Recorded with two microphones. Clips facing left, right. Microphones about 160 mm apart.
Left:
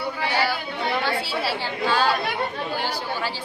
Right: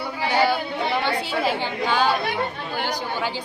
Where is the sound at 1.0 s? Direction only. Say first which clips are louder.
Right 2 dB; 20° right (ahead or behind).